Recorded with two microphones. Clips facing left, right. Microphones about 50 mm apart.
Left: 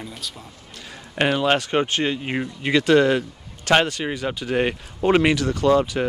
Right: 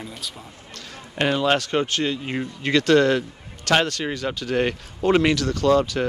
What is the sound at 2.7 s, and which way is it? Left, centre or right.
Speech, centre.